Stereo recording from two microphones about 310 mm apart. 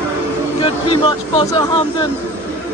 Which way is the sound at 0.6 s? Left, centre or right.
Centre.